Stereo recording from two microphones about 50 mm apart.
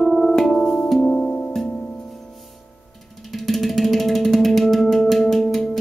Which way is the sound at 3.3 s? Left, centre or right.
Centre.